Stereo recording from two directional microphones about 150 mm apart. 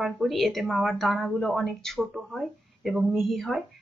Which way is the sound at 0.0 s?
Centre (ahead or behind).